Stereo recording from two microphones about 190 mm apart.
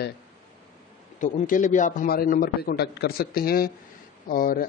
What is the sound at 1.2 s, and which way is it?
Speech, 40° left (ahead or behind).